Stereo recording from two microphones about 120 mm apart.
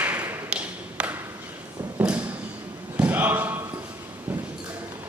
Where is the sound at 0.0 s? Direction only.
15° right (ahead or behind).